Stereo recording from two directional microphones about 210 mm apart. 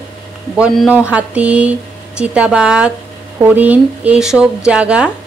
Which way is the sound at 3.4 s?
10° right (ahead or behind).